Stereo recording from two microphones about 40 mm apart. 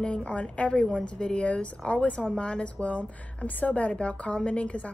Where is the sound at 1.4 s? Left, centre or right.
Left.